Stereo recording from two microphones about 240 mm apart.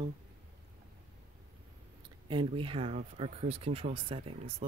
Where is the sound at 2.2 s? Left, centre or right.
Right.